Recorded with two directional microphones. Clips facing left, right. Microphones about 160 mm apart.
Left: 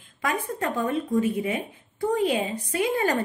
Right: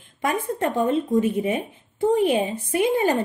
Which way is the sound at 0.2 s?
20° right (ahead or behind).